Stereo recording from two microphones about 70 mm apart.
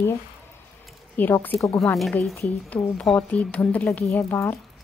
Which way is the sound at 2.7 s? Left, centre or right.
Centre.